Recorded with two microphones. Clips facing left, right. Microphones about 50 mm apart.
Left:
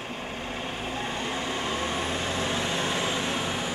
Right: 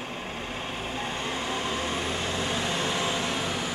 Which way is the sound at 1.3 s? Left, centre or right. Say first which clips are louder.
Right 1 dB; centre.